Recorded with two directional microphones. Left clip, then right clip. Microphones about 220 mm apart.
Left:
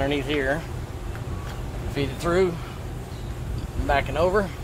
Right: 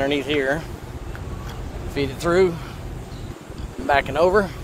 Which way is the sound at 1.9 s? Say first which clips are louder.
Right 4 dB; 30° right (ahead or behind).